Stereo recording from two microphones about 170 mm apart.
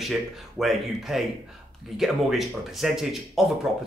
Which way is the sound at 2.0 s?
Centre (ahead or behind).